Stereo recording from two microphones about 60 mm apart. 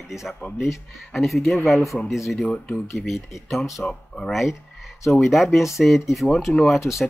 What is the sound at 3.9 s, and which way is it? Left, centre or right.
Speech, centre.